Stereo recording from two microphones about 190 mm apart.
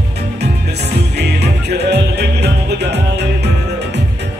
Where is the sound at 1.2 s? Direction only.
60° right (ahead or behind).